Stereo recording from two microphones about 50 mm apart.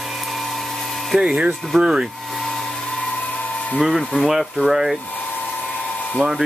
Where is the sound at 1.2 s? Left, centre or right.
Right.